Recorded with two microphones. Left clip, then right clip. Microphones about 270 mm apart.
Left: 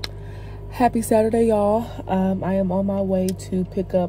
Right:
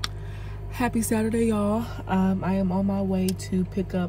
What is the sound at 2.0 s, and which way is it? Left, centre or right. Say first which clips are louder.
Mantra: left 4 dB; right.